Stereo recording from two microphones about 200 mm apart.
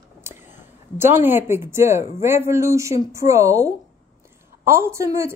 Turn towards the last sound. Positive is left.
turn(degrees=-15)  # may be behind; listen again after turning